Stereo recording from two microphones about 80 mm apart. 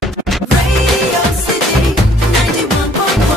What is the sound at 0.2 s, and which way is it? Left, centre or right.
Music, centre.